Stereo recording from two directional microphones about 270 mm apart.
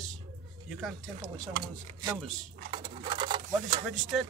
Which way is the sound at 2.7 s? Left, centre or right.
Centre.